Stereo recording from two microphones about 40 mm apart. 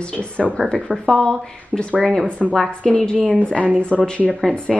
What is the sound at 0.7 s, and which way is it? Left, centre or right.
Speech, left.